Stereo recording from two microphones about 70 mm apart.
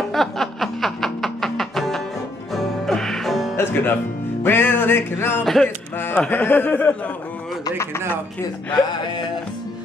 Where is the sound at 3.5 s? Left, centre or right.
Left.